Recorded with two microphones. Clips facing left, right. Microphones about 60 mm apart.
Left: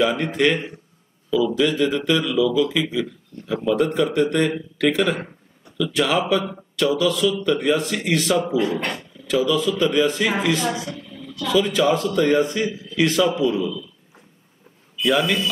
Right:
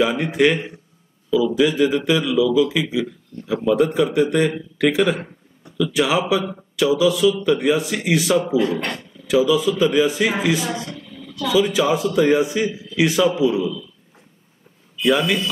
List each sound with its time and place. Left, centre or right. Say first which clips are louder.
0.0 s a man's voice: right 2 dB; centre
10.8 s a sound: left 1 dB; right
11.4 s a man's voice: right 1 dB; centre
15.0 s speech: right 1 dB; centre